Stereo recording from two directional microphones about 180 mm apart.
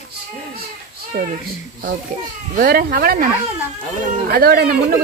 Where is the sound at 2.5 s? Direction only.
55° right (ahead or behind).